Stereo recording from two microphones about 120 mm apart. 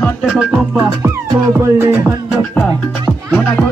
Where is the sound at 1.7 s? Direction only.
20° right (ahead or behind).